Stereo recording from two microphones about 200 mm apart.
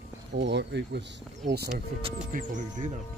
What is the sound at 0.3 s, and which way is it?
Speech, 60° right (ahead or behind).